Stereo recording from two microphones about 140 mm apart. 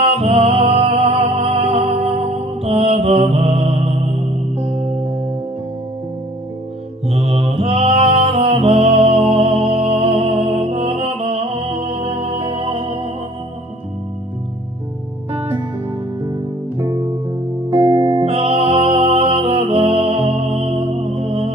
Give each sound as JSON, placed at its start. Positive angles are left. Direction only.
{"t": 0.0, "sound": "music", "side_deg": -45}
{"t": 7.1, "sound": "music", "side_deg": -45}
{"t": 16.7, "sound": "music", "side_deg": -25}
{"t": 18.0, "sound": "music", "side_deg": -40}